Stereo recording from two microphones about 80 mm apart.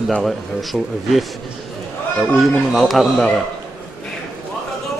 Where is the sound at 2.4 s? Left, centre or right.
Centre.